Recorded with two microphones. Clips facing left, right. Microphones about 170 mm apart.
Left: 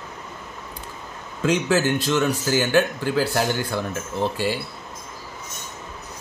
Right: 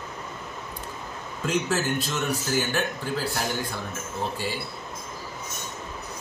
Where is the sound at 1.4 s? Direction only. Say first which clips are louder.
Left 6 dB; 90° left.